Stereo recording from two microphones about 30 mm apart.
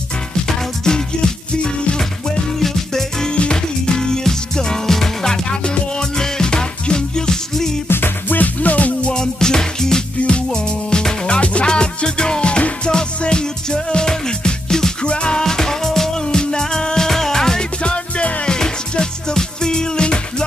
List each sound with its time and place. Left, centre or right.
0.8 s music: left
2.6 s music: centre
3.3 s music: left
6.1 s music: left
8.3 s music: left
9.1 s music: left
10.2 s music: left
11.2 s music: left
15.0 s music: left
15.4 s music: centre
16.2 s music: left
17.6 s music: left
18.4 s music: left